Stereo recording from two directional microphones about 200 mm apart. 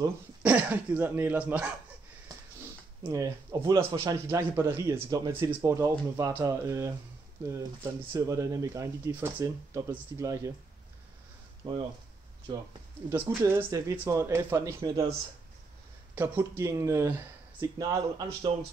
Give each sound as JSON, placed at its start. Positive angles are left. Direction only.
{"t": 0.4, "sound": "a man's voice", "side_deg": -5}
{"t": 3.0, "sound": "a man's voice", "side_deg": -15}
{"t": 11.6, "sound": "speech", "side_deg": -25}
{"t": 13.1, "sound": "a man's voice", "side_deg": -10}
{"t": 16.2, "sound": "a man's voice", "side_deg": -10}